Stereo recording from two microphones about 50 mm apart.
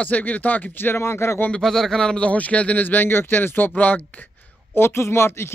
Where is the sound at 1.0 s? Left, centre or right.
Left.